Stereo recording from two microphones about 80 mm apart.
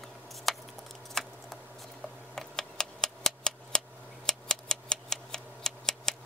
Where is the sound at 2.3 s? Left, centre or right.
Centre.